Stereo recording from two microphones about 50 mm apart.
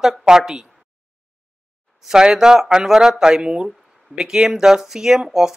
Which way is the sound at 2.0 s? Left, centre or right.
Centre.